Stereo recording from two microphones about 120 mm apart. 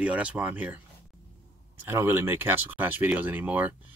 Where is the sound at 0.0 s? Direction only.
10° right (ahead or behind).